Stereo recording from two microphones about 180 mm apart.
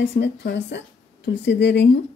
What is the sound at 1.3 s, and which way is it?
Speech, 70° left (ahead or behind).